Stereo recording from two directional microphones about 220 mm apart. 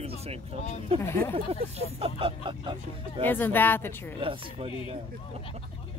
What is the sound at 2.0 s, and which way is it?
Speech, 25° right (ahead or behind).